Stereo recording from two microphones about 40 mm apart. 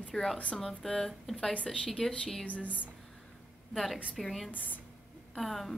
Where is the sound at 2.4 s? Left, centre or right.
Left.